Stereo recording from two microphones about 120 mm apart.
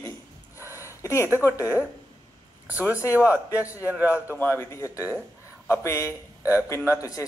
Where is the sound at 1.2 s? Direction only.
15° right (ahead or behind).